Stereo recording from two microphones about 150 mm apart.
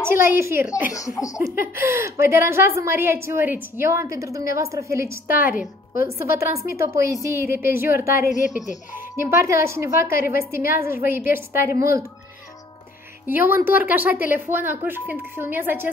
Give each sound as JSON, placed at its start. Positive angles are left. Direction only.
{"t": 0.0, "sound": "a woman's voice", "side_deg": -15}
{"t": 0.9, "sound": "laughter", "side_deg": 20}
{"t": 1.4, "sound": "a woman's voice", "side_deg": -15}
{"t": 10.1, "sound": "a woman's voice", "side_deg": 75}
{"t": 10.8, "sound": "a woman's voice", "side_deg": -15}
{"t": 13.3, "sound": "a woman's voice", "side_deg": -15}